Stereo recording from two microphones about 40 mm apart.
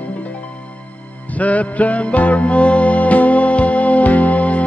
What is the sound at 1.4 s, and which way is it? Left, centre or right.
Music, left.